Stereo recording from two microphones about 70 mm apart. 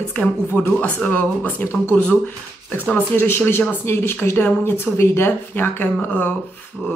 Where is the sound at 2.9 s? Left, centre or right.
Left.